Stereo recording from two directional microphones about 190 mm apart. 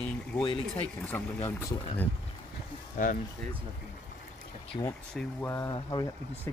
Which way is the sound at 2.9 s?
45° left (ahead or behind).